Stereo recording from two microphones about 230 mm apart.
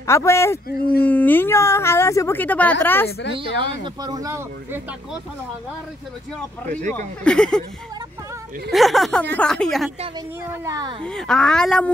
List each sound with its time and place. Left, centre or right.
0.0 s a woman's voice: centre
0.7 s speech: left
1.0 s a woman's voice: centre
3.1 s a woman's voice: left
3.3 s speech: right
7.2 s speech: centre
8.7 s speech: centre
10.6 s speech: centre
11.1 s speech: centre